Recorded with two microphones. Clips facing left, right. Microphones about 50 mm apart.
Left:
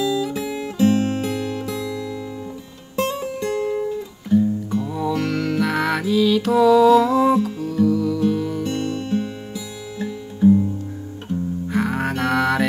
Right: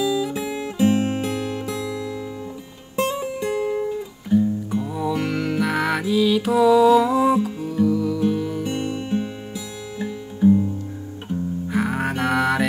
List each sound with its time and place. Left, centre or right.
0.0 s guitar: centre
3.0 s music: centre
10.4 s music: centre
11.6 s music: centre